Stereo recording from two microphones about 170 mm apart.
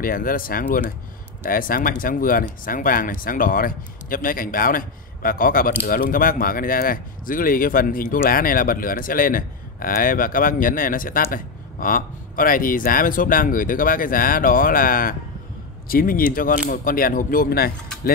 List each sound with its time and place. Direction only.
0.0 s speech: 55° left (ahead or behind)